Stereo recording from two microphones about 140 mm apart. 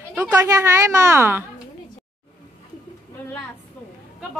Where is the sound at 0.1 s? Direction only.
10° right (ahead or behind).